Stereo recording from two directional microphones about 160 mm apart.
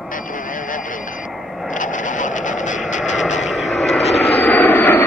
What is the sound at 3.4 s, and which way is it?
Vehicle, centre (ahead or behind).